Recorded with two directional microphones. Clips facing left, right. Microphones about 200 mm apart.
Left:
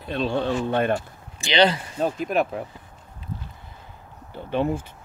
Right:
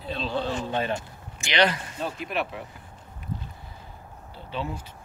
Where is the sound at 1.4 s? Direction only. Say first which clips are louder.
Left 4 dB; 30° left (ahead or behind).